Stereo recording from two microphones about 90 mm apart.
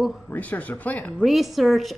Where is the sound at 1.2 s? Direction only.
Centre (ahead or behind).